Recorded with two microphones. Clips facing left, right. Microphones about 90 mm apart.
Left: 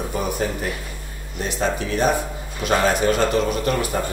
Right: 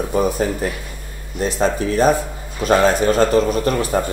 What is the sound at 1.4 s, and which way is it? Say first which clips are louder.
Speech: right 5 dB; 35° right (ahead or behind).